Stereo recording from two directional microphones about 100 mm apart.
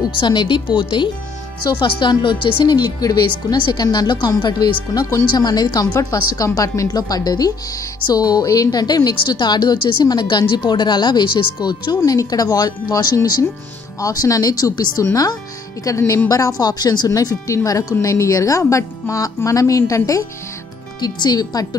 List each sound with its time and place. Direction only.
0.2 s a woman's voice: 50° left (ahead or behind)
12.0 s speech: 35° left (ahead or behind)
21.0 s a woman's voice: 45° left (ahead or behind)